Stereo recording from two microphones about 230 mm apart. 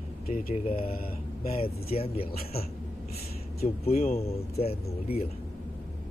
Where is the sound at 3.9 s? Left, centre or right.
Left.